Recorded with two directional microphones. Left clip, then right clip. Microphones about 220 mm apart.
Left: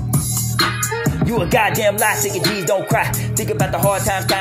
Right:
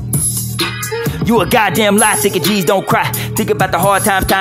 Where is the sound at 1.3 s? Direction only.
25° right (ahead or behind).